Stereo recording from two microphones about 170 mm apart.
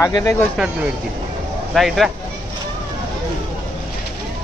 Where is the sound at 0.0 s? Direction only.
20° left (ahead or behind).